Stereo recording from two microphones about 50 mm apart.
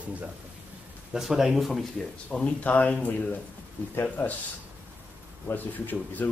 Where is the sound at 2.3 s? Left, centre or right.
Left.